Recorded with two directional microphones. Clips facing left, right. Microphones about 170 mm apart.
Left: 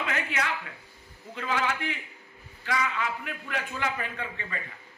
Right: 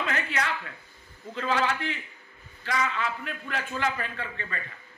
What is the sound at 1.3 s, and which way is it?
A man's voice, 15° left (ahead or behind).